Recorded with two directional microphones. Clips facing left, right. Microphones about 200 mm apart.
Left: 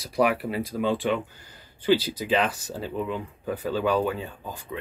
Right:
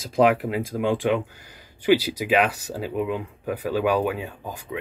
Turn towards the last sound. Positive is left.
turn(degrees=-10)  # may be behind; listen again after turning